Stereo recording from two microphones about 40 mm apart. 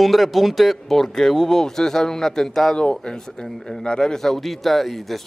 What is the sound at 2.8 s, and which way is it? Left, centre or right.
Speech, left.